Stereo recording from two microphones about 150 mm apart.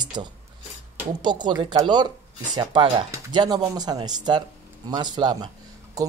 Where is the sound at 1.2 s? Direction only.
30° right (ahead or behind).